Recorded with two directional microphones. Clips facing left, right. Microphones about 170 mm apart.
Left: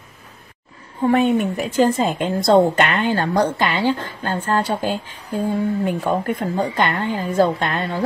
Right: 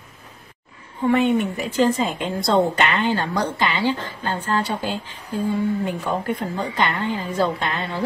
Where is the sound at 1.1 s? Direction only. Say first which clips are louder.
Left 2 dB; 45° left (ahead or behind).